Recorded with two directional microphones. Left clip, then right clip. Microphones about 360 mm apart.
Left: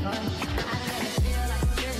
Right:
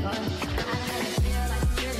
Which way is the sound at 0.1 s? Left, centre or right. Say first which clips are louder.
Even; centre.